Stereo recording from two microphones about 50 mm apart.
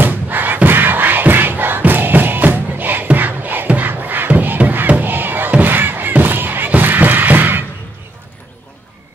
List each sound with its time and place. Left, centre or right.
0.0 s crowd: right